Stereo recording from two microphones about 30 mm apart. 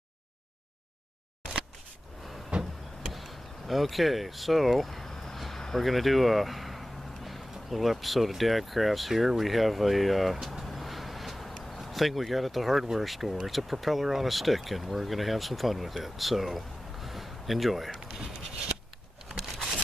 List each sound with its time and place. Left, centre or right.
2.5 s a sound: right
3.1 s vehicle: centre
5.8 s speech: centre
10.6 s vehicle: centre
11.7 s speech: centre
17.9 s a sound: centre